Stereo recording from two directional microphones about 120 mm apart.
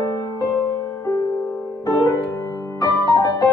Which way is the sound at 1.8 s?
30° left (ahead or behind).